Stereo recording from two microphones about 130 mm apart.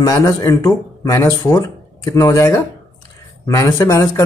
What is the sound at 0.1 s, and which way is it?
Speech, 25° left (ahead or behind).